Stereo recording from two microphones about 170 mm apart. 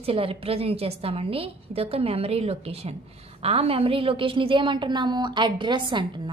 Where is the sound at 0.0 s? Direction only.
35° right (ahead or behind).